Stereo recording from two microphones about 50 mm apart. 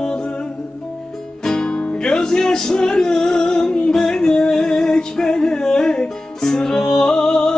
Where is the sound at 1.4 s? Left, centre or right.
Centre.